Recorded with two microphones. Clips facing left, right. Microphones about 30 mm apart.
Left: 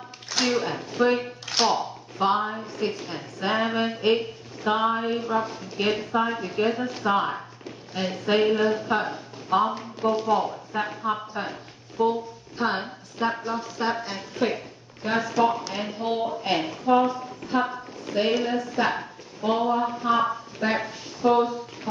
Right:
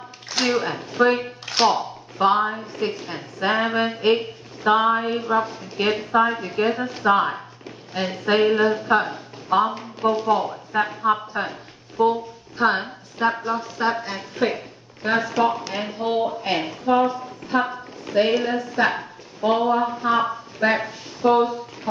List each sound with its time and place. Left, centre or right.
0.3 s speech: centre